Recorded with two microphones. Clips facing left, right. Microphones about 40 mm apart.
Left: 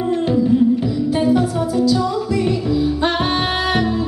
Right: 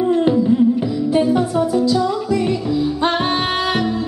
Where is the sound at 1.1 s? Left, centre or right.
Centre.